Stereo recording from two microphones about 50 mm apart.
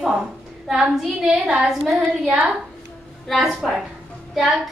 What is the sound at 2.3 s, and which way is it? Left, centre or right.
Speech, right.